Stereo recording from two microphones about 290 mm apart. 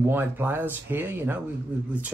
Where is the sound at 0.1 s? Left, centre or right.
Centre.